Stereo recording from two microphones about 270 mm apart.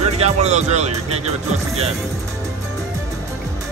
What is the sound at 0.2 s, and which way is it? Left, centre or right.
Speech, right.